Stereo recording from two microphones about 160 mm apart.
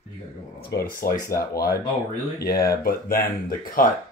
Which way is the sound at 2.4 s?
70° left (ahead or behind).